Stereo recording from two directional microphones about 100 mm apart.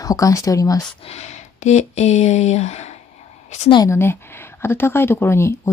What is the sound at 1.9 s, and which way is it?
Speech, 90° left.